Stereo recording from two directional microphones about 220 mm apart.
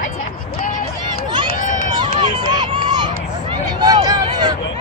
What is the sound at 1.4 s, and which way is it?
Run, 40° left (ahead or behind).